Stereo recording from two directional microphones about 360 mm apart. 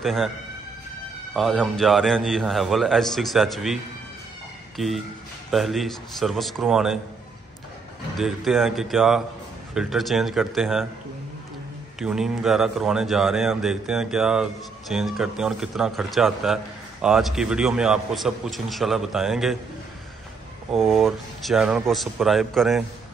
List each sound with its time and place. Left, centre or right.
0.0 s a man's voice: centre
1.3 s a man's voice: centre
8.2 s a man's voice: centre
12.0 s a man's voice: centre
20.7 s a man's voice: centre